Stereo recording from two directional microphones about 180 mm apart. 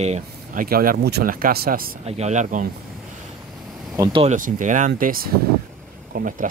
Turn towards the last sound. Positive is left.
turn(degrees=-50)  # may be behind; listen again after turning